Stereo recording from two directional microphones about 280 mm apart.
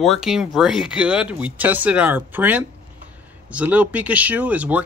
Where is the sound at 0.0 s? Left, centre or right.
Centre.